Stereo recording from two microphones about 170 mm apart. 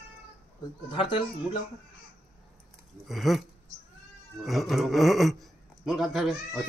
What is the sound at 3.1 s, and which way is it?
Speech, centre (ahead or behind).